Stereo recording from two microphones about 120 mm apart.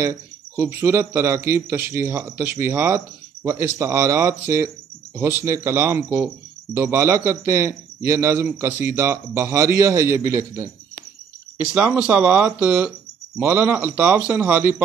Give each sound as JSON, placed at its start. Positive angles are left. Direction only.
{"t": 0.0, "sound": "speech", "side_deg": -20}
{"t": 11.6, "sound": "speech", "side_deg": -10}